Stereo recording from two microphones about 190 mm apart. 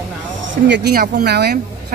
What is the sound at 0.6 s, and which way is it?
Speech, 60° right (ahead or behind).